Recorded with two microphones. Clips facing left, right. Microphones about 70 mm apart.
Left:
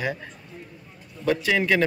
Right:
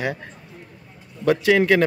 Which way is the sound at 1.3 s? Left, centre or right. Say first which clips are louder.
Right 5 dB; right.